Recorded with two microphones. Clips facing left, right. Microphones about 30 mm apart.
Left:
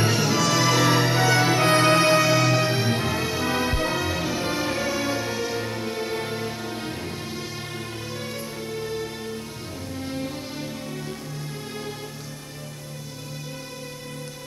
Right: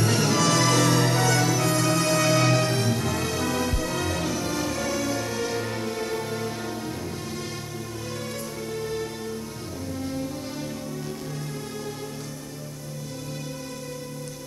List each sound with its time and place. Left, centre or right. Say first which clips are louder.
0.1 s music: even; centre; by 2.2 s left
2.2 s music: left 1 dB; centre; by 4.0 s left
4.0 s music: left 1 dB; centre
4.4 s music: left 2 dB; left
8.7 s music: even; centre
9.9 s music: left 1 dB; left